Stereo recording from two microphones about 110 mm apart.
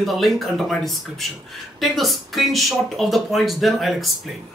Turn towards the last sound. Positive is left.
turn(degrees=0)  # may be behind; listen again after turning